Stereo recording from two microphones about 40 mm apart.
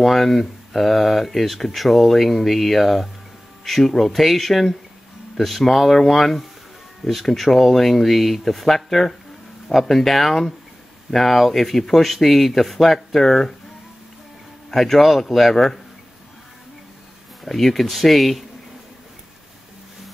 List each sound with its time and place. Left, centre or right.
0.0 s speech: centre
14.7 s speech: centre
17.5 s speech: centre